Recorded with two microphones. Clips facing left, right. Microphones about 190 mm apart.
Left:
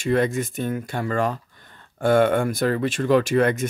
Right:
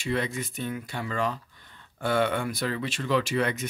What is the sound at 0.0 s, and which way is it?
Speech, 50° left (ahead or behind).